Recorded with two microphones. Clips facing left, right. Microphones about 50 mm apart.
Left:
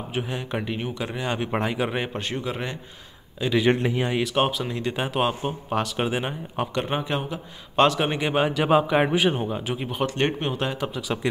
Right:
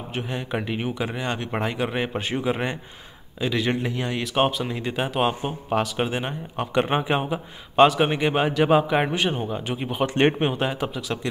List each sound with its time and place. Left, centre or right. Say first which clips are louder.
0.1 s speech: right 1 dB; centre
1.3 s speech: left 1 dB; centre
2.1 s speech: right 4 dB; centre
3.4 s speech: even; centre
3.8 s speech: left 3 dB; centre
4.2 s speech: right 4 dB; centre
6.7 s speech: right 7 dB; centre
7.7 s speech: right 3 dB; centre
10.0 s speech: right 5 dB; right
10.6 s speech: right 2 dB; centre